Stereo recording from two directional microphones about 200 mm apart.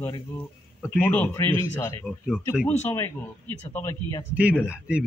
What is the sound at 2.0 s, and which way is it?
Speech, centre (ahead or behind).